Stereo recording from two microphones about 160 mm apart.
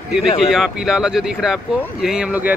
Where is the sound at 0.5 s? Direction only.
5° right (ahead or behind).